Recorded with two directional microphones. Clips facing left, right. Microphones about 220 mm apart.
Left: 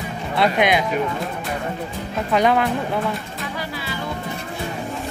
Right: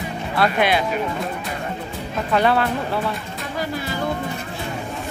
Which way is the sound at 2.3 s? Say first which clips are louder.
Left 1 dB; 15° left (ahead or behind).